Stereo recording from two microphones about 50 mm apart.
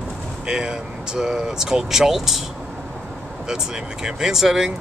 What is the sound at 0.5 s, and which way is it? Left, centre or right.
Speech, centre.